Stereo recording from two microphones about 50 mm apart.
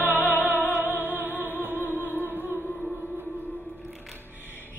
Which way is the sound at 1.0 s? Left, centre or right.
Right.